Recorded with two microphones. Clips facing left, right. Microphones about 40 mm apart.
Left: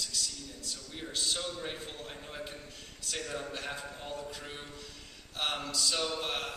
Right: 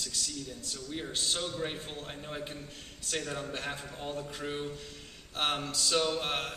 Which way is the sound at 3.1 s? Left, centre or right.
Right.